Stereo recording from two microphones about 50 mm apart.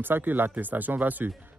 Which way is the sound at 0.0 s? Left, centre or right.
Right.